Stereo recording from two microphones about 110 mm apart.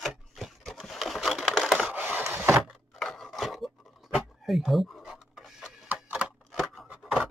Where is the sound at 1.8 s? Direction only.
15° right (ahead or behind).